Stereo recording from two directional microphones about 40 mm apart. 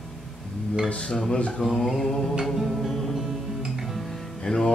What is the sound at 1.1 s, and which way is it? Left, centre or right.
Speech, left.